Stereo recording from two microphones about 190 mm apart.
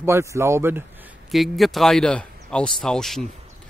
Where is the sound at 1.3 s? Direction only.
Centre (ahead or behind).